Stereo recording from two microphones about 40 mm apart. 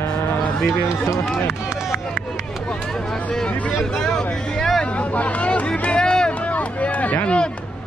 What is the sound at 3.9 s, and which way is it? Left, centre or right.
Vehicle, centre.